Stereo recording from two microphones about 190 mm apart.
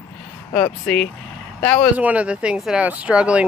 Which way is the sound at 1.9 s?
10° right (ahead or behind).